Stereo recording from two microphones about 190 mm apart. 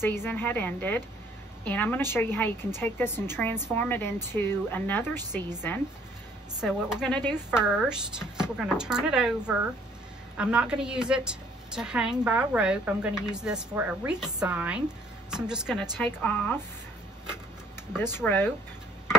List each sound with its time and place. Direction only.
0.0 s a woman's voice: 10° left (ahead or behind)
6.6 s a woman's voice: 5° right (ahead or behind)
16.0 s a woman's voice: 10° left (ahead or behind)
18.1 s a woman's voice: 10° left (ahead or behind)